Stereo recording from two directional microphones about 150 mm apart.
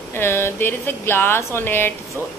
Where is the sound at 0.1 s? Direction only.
15° left (ahead or behind).